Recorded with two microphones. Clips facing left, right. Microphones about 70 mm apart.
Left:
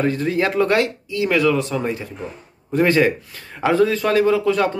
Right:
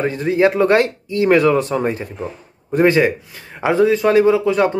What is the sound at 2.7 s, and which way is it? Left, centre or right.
A man's voice, right.